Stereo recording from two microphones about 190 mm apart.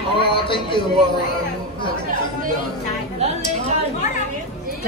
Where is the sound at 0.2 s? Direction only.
25° left (ahead or behind).